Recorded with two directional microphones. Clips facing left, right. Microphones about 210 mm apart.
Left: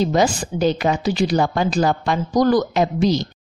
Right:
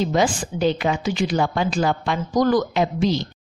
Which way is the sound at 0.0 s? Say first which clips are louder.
Left 2 dB; 40° left (ahead or behind).